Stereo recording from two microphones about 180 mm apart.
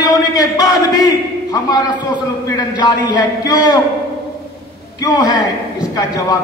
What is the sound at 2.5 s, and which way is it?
A man's voice, 20° left (ahead or behind).